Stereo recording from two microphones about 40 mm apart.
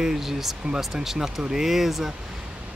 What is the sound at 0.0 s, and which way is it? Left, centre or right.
Speech, centre.